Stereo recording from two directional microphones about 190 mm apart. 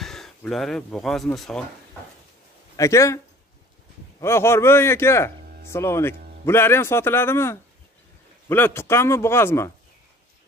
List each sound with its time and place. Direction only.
0.0 s speech: centre (ahead or behind)
2.7 s speech: 15° left (ahead or behind)
4.2 s speech: 15° left (ahead or behind)